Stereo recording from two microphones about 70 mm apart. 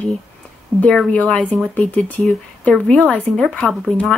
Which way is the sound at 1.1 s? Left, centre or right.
Centre.